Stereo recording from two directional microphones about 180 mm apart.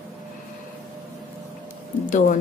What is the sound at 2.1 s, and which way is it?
Speech, 45° left (ahead or behind).